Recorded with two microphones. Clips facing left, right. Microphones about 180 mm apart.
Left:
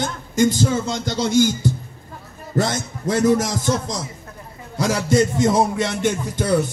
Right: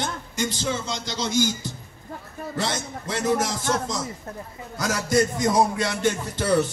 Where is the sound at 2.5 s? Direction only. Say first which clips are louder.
Left 7 dB; 45° left (ahead or behind).